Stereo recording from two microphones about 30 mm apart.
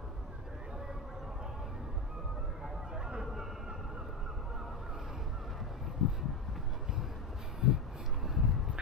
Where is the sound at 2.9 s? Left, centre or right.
Right.